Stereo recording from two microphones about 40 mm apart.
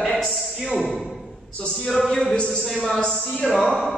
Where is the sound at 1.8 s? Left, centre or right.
Centre.